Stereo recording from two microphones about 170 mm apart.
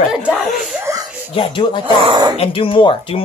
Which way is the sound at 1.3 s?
30° left (ahead or behind).